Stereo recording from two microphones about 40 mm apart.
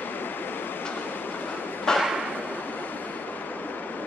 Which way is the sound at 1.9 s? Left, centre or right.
Centre.